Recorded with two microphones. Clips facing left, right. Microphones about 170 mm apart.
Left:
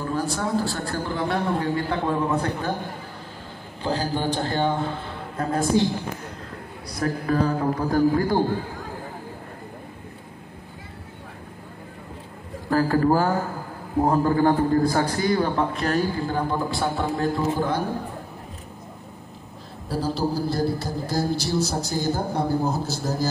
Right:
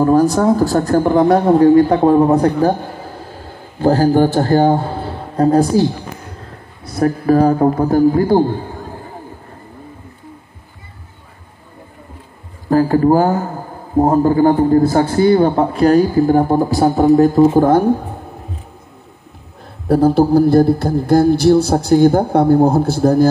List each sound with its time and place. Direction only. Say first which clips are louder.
0.0 s a man's voice: right 14 dB; 40° right (ahead or behind)
6.9 s a man's voice: right 11 dB; 30° right (ahead or behind)
7.7 s a man's voice: right 9 dB; 50° right (ahead or behind)
12.6 s a man's voice: right 8 dB; 25° right (ahead or behind); by 17.8 s 50° right (ahead or behind)
19.9 s a man's voice: right 14 dB; 60° right (ahead or behind)